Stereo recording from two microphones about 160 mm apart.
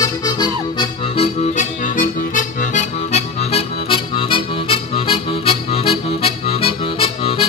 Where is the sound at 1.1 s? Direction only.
50° left (ahead or behind).